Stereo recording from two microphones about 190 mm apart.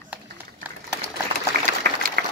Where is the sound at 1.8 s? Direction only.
50° right (ahead or behind).